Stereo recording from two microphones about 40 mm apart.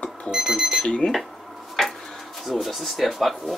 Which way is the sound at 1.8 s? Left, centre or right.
Centre.